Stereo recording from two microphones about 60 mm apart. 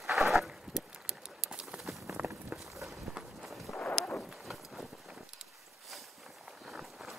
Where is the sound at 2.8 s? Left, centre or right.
Centre.